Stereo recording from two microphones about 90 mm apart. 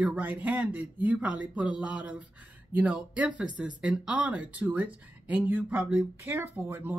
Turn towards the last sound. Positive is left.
turn(degrees=-25)  # may be behind; listen again after turning